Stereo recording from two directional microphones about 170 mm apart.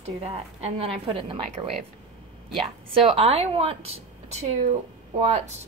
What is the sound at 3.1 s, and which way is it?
Speech, 35° right (ahead or behind).